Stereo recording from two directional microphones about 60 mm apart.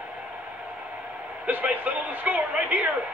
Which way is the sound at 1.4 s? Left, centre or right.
Right.